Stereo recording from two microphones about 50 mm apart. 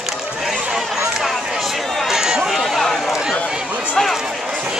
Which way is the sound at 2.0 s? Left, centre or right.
Centre.